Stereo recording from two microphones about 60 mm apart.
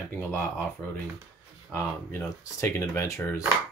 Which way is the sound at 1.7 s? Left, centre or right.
Left.